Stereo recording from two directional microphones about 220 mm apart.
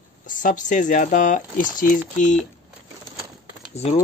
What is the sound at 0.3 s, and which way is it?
Speech, 35° left (ahead or behind).